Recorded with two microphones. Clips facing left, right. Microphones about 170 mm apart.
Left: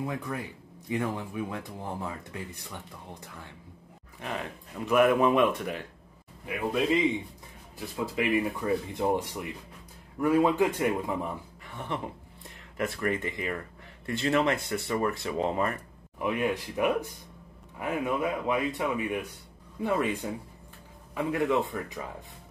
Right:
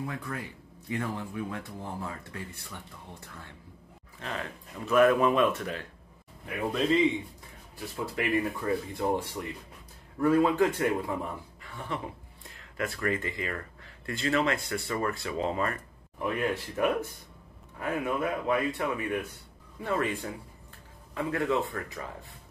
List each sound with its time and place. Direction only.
0.0 s speech: 20° left (ahead or behind)
4.8 s speech: 15° left (ahead or behind)
11.6 s a sound: 20° left (ahead or behind)
12.7 s speech: 20° left (ahead or behind)